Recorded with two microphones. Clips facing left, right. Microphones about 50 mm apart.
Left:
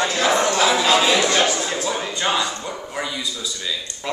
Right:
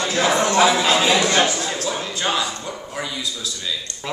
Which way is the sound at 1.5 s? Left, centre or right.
Centre.